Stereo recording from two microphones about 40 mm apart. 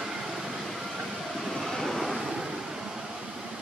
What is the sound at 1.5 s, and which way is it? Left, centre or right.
Vehicle, centre.